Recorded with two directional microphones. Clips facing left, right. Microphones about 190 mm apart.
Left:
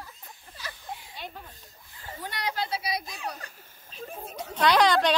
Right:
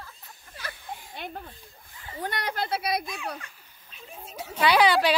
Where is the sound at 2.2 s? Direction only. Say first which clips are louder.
Right 2 dB; 55° right (ahead or behind).